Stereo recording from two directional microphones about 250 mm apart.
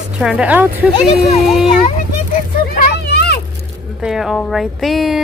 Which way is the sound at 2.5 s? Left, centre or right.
Left.